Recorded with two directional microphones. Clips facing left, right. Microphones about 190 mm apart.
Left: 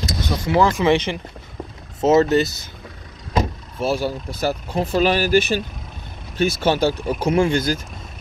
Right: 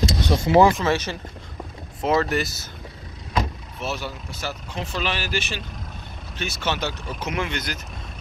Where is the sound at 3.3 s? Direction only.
35° left (ahead or behind).